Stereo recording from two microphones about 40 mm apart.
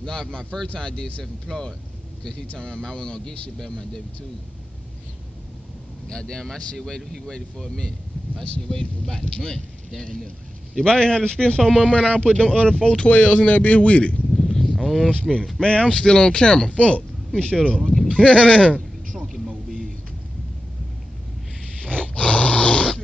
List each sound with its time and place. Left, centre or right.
0.0 s a man's voice: centre
2.6 s a man's voice: centre
6.0 s speech: centre
8.6 s speech: centre
10.8 s a man's voice: centre
13.0 s speech: left
14.3 s a sound: centre
15.2 s speech: centre
15.6 s a man's voice: left
16.7 s speech: left
17.6 s a man's voice: left
19.1 s a sound: centre
21.8 s snoring: left